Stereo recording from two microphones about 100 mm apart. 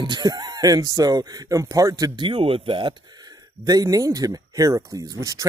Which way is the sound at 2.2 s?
70° right (ahead or behind).